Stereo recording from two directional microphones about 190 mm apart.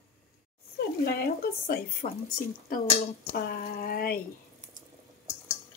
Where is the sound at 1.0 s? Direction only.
55° left (ahead or behind).